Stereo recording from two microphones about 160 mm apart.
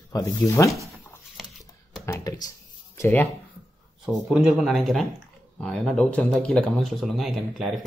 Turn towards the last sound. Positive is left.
turn(degrees=0)  # may be behind; listen again after turning